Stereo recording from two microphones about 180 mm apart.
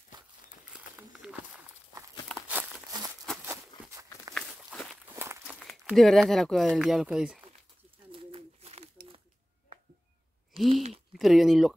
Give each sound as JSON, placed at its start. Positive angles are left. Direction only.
{"t": 0.7, "sound": "crumpling", "side_deg": -5}
{"t": 3.4, "sound": "a sound", "side_deg": -10}
{"t": 5.0, "sound": "walk", "side_deg": -15}
{"t": 5.6, "sound": "speech", "side_deg": 0}
{"t": 8.1, "sound": "bird", "side_deg": -30}
{"t": 10.7, "sound": "speech", "side_deg": -35}
{"t": 11.1, "sound": "speech", "side_deg": 0}